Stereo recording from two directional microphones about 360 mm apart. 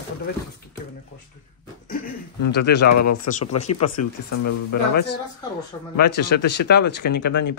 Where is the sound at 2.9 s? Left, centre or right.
Left.